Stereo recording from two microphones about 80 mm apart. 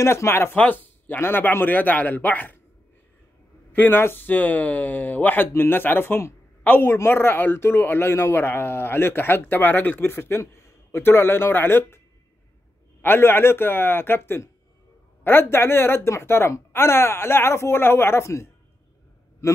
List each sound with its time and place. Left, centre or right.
0.0 s a woman's voice: left
3.7 s speech: left
13.0 s a woman's voice: left